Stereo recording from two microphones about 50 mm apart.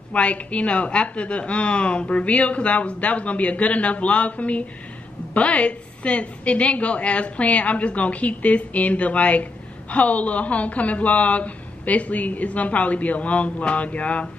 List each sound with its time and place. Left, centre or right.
0.1 s a woman's voice: left